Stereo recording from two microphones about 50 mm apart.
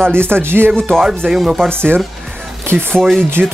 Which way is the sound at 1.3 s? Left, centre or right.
Centre.